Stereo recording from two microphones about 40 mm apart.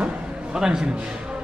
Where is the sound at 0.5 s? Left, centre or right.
Centre.